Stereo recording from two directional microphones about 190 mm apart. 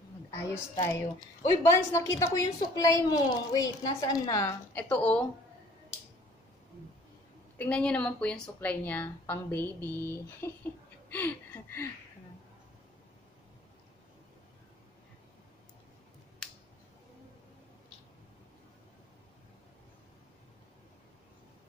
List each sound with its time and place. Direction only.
0.3 s a woman's voice: 15° left (ahead or behind)
7.5 s a woman's voice: 5° left (ahead or behind)
11.1 s a sound: 10° left (ahead or behind)